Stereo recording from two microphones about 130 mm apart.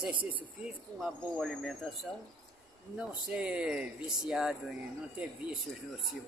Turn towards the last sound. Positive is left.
turn(degrees=-5)  # may be behind; listen again after turning